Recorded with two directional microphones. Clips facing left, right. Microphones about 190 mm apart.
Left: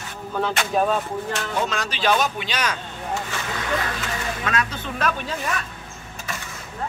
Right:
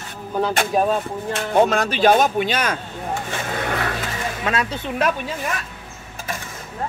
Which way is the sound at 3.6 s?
55° right (ahead or behind).